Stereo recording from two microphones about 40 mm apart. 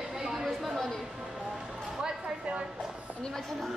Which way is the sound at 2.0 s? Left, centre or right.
Centre.